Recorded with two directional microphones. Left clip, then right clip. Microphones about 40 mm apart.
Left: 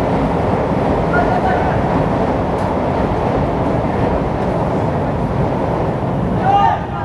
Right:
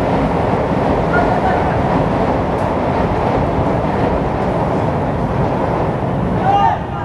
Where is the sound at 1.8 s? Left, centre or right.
Centre.